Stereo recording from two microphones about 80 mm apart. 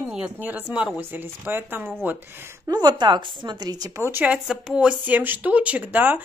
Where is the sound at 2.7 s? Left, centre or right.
Right.